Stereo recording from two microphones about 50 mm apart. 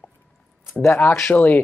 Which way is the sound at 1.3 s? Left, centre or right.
Left.